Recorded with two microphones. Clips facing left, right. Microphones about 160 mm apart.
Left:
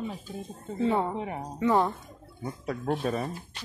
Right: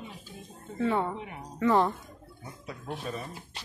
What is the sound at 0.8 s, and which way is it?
Speech, 20° left (ahead or behind).